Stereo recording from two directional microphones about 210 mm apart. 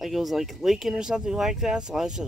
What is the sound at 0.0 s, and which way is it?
Speech, centre (ahead or behind).